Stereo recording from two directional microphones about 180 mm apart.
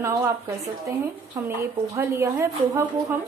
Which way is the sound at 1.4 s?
15° right (ahead or behind).